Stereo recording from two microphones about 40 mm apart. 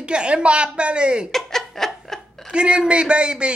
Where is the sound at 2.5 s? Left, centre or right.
Right.